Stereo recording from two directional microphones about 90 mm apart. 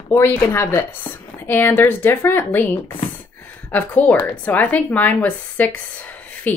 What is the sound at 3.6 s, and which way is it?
Speech, 20° left (ahead or behind).